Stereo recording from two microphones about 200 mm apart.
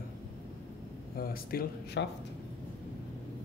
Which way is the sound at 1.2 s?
45° left (ahead or behind).